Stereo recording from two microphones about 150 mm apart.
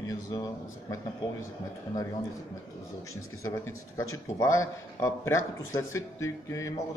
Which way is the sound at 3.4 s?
20° left (ahead or behind).